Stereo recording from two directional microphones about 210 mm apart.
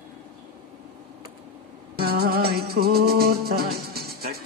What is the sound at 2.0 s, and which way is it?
Music, 45° right (ahead or behind).